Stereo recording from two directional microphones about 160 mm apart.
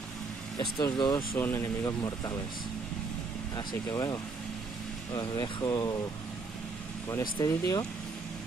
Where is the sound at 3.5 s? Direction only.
20° left (ahead or behind).